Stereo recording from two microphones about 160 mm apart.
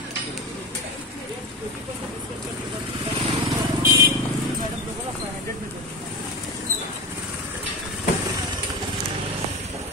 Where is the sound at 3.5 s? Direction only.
15° right (ahead or behind).